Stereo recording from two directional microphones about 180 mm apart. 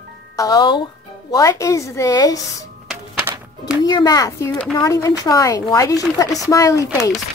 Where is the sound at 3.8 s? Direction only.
20° left (ahead or behind).